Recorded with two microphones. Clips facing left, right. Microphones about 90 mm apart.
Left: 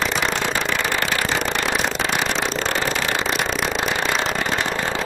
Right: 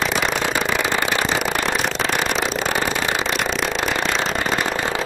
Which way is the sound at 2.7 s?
15° right (ahead or behind).